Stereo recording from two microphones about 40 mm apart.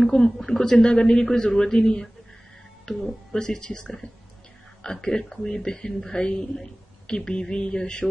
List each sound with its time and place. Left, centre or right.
0.4 s a man's voice: centre
2.9 s a man's voice: centre
7.1 s mantra: left